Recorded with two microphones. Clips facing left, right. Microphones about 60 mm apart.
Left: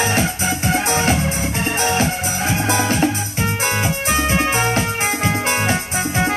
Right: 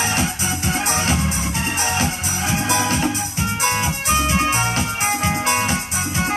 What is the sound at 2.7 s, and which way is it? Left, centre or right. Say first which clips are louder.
Music: left 3 dB; left.